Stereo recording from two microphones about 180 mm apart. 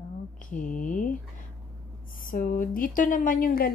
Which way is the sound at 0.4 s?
45° left (ahead or behind).